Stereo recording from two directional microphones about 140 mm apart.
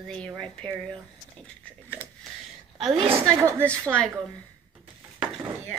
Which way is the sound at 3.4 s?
20° right (ahead or behind).